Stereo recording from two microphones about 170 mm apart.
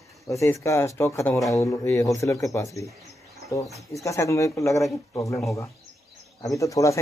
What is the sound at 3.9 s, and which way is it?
Speech, 20° left (ahead or behind).